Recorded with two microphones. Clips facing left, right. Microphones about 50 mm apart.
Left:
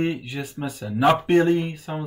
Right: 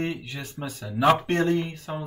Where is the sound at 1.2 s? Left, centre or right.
Centre.